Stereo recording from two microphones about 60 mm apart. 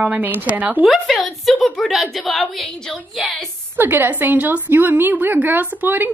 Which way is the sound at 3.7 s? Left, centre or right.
Right.